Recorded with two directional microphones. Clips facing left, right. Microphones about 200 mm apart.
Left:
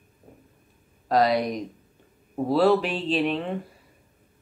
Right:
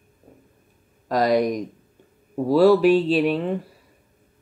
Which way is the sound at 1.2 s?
45° right (ahead or behind).